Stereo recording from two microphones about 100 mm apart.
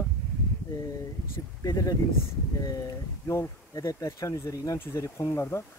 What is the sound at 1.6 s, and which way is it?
Speech, 35° left (ahead or behind).